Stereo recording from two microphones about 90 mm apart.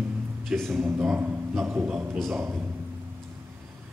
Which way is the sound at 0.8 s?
25° right (ahead or behind).